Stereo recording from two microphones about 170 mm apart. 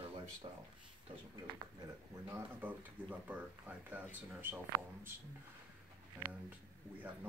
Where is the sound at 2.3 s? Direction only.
10° right (ahead or behind).